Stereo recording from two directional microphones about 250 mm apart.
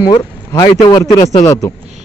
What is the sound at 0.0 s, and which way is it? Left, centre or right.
A man's voice, centre.